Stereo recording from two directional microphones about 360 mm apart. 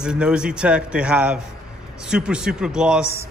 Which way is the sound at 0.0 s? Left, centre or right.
Centre.